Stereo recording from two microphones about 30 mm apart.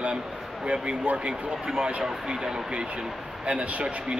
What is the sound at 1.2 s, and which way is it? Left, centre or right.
Speech, right.